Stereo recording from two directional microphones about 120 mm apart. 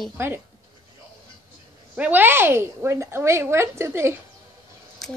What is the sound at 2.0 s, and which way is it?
A woman's voice, 15° right (ahead or behind).